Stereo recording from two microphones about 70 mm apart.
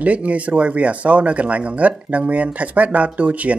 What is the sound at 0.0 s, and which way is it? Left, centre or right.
Speech, centre.